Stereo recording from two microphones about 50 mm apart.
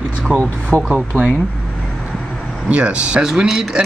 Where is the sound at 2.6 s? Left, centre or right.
Right.